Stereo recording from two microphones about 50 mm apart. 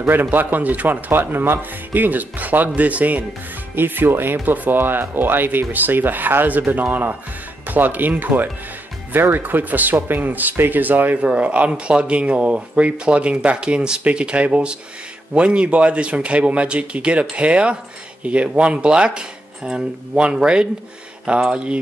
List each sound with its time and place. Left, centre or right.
0.0 s speech: right
1.2 s speech: right
3.7 s speech: right
11.1 s speech: right
21.4 s speech: centre